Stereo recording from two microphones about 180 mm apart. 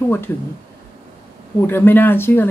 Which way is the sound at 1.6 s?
10° left (ahead or behind).